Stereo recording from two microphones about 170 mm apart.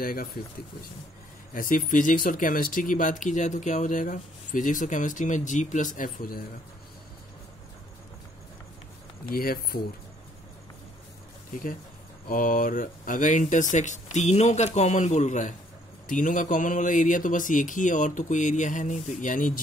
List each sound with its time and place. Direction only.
0.0 s speech: 55° left (ahead or behind)
1.5 s speech: 55° left (ahead or behind)
9.3 s speech: 60° left (ahead or behind)
12.3 s speech: 55° left (ahead or behind)